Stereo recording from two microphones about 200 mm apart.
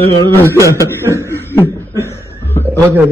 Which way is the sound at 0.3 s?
10° left (ahead or behind).